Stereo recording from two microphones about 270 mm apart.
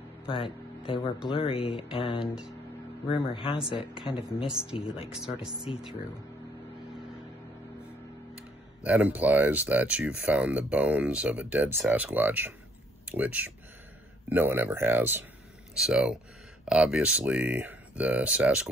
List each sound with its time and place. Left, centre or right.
0.3 s speech: centre
1.3 s a sound: left
4.5 s speech: centre
4.7 s a sound: centre
5.1 s speech: centre
8.8 s speech: centre